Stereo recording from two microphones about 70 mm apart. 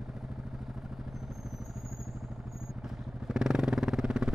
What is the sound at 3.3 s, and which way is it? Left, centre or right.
Vehicle, centre.